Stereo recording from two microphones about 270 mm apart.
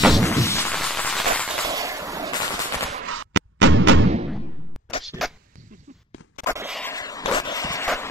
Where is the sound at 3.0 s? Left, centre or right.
Right.